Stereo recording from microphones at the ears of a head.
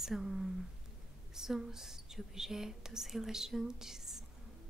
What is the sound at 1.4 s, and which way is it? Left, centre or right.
Speech, centre.